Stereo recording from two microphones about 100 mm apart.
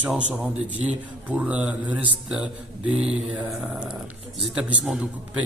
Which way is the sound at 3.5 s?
15° right (ahead or behind).